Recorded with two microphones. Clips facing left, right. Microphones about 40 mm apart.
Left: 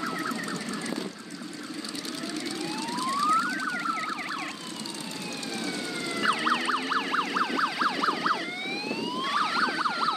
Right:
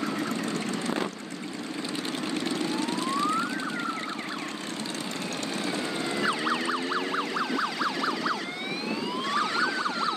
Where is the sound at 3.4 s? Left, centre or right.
Left.